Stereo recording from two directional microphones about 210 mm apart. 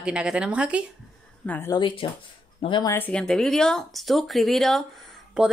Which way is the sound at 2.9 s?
5° left (ahead or behind).